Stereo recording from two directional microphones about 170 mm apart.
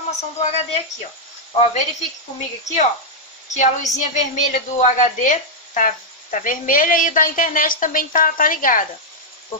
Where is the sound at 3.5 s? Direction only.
45° left (ahead or behind).